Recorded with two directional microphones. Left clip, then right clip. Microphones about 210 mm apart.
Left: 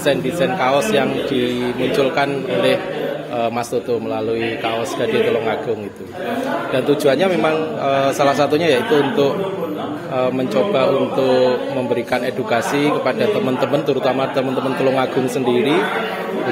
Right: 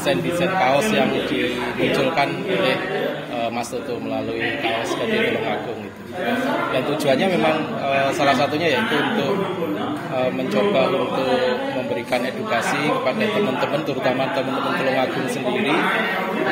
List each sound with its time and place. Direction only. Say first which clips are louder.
0.0 s a man's voice: left 3 dB; 55° left (ahead or behind)
6.7 s a man's voice: left 7 dB; 60° left (ahead or behind)
10.5 s a man's voice: left 2 dB; 55° left (ahead or behind)